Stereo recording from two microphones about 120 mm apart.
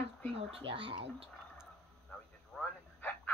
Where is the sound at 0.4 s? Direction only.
50° right (ahead or behind).